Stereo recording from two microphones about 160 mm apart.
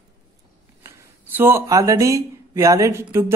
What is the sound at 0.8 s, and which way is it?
Speech, 15° right (ahead or behind).